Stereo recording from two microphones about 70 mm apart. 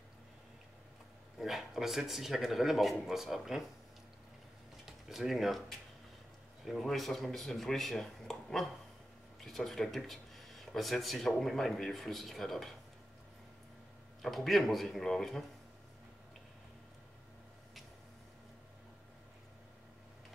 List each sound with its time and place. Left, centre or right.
1.4 s a man's voice: centre
4.8 s a man's voice: centre
14.2 s a man's voice: centre